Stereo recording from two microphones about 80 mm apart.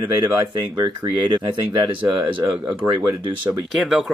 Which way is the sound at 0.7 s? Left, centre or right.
Right.